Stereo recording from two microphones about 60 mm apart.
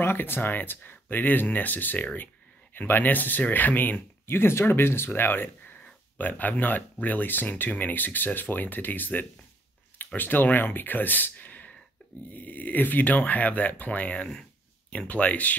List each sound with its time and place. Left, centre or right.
0.0 s speech: left